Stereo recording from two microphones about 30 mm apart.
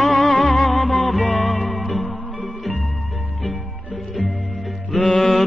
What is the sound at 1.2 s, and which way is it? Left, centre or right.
Music, left.